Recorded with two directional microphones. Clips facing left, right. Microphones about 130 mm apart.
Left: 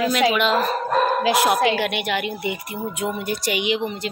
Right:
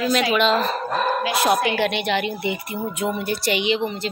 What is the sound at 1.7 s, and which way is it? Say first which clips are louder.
Speech: right 2 dB; 10° left (ahead or behind).